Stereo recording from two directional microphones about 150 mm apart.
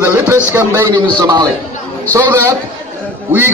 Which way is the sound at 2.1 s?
20° right (ahead or behind).